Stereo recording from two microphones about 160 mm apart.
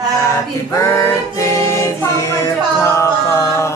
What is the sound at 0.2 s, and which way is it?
Choir, 20° left (ahead or behind).